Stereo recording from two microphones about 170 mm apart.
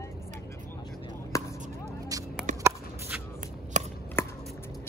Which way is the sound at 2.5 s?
45° right (ahead or behind).